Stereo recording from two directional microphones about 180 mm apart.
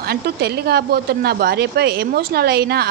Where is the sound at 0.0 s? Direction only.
60° right (ahead or behind).